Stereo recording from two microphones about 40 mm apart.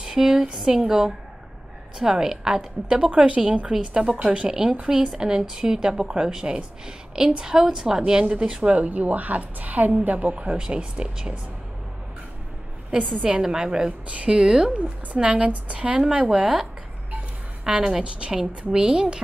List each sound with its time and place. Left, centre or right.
0.0 s a woman's voice: centre
3.1 s a woman's voice: right
4.2 s a woman's voice: right
4.5 s a woman's voice: centre
13.2 s a woman's voice: right
14.0 s a woman's voice: right
14.3 s a woman's voice: centre
15.2 s a woman's voice: right
17.6 s a woman's voice: centre